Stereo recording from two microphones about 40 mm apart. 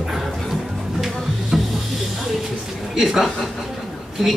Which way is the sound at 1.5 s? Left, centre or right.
Centre.